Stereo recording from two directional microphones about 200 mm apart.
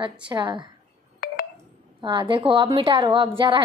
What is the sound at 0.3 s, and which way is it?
Speech, 20° right (ahead or behind).